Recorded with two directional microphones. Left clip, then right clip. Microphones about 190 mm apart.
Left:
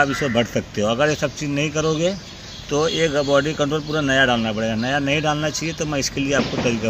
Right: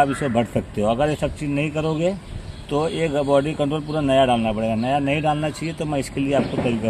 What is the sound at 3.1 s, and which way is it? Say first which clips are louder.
Speech: left 1 dB; 5° right (ahead or behind).